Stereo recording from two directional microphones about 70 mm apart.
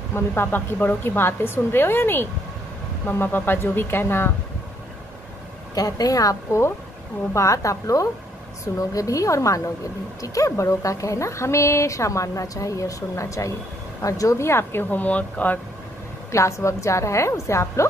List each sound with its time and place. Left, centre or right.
0.1 s a woman's voice: left
5.8 s a woman's voice: left
16.3 s speech: left